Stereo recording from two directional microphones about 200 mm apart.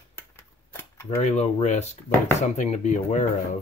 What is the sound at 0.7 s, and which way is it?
Cutlery, 15° left (ahead or behind).